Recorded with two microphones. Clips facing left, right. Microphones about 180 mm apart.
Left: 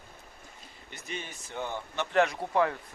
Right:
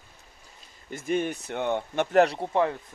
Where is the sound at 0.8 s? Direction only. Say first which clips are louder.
Right 13 dB; 50° right (ahead or behind).